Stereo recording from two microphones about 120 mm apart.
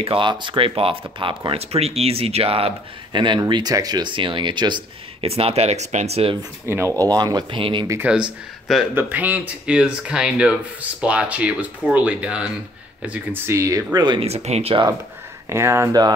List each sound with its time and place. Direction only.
0.0 s speech: 45° right (ahead or behind)
5.2 s speech: 55° right (ahead or behind)
6.6 s speech: 20° right (ahead or behind); by 7.8 s 45° right (ahead or behind)
8.0 s speech: 10° right (ahead or behind)
13.5 s speech: 25° right (ahead or behind)
13.9 s speech: 40° right (ahead or behind)
14.2 s speech: 60° right (ahead or behind)
15.5 s speech: 20° right (ahead or behind)